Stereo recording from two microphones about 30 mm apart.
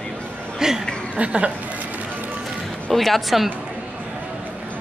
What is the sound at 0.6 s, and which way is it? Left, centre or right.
Speech, centre.